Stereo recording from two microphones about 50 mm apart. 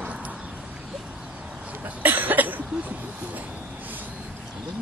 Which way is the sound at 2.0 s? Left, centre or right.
Right.